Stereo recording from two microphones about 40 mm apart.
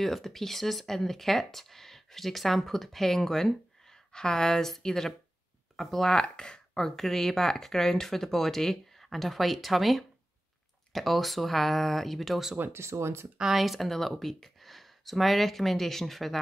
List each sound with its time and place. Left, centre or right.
0.0 s speech: centre
6.1 s speech: left; by 12.4 s centre
12.7 s speech: right
13.5 s speech: centre